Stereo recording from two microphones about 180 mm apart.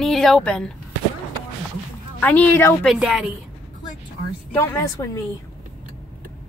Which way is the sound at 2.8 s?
Centre (ahead or behind).